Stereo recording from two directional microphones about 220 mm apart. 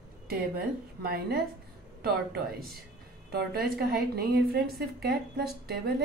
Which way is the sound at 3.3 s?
45° right (ahead or behind).